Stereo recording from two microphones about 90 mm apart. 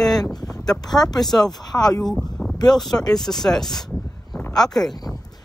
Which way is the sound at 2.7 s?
5° left (ahead or behind).